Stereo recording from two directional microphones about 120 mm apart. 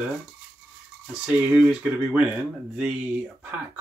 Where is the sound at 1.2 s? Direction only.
5° right (ahead or behind).